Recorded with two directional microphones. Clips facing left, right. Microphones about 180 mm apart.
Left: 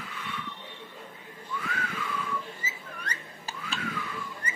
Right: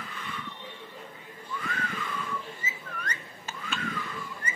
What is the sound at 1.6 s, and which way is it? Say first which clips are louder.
Whistling: right 1 dB; 5° left (ahead or behind).